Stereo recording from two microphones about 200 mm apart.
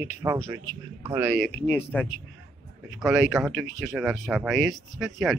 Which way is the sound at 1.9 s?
10° left (ahead or behind).